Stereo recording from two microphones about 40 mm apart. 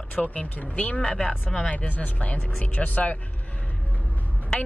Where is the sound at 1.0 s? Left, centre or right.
Centre.